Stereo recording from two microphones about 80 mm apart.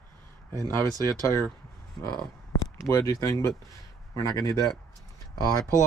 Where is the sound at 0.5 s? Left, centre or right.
Right.